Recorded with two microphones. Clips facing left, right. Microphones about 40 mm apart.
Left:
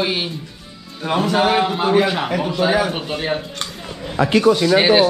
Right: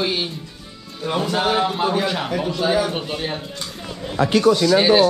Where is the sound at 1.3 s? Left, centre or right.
Centre.